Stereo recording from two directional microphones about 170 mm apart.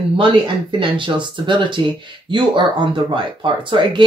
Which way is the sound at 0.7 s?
30° right (ahead or behind).